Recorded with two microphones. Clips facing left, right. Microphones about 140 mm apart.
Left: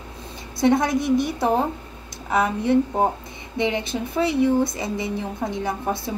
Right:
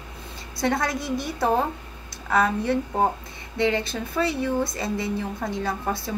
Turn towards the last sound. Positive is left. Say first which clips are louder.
# left 2 dB
turn(degrees=20)  # may be behind; listen again after turning